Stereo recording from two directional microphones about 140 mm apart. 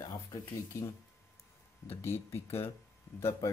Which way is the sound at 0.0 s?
20° left (ahead or behind).